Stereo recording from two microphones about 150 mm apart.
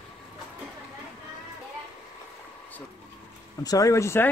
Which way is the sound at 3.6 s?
20° left (ahead or behind).